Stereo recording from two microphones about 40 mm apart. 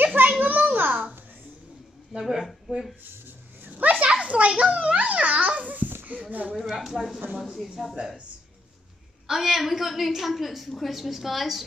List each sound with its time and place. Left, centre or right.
0.0 s a sound: right
0.7 s babbling: right
2.1 s a woman's voice: centre
3.1 s a sound: right
4.2 s a child's voice: right
6.7 s a woman's voice: centre
7.7 s a woman's voice: centre
9.3 s a woman's voice: centre